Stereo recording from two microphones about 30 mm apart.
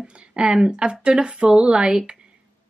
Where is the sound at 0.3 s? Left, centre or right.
Right.